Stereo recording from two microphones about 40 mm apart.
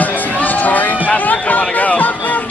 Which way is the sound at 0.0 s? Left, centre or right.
Left.